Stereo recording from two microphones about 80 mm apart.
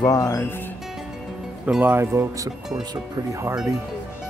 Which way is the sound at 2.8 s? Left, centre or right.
Right.